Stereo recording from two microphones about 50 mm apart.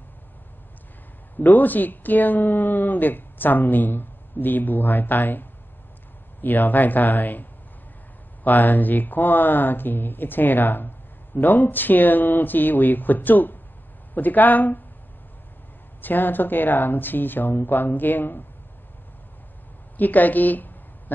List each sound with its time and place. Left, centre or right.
1.4 s a woman's voice: left
8.5 s a woman's voice: left
16.0 s a woman's voice: left
20.0 s a woman's voice: left